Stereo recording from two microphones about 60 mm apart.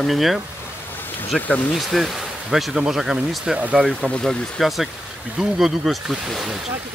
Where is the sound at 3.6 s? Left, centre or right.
Right.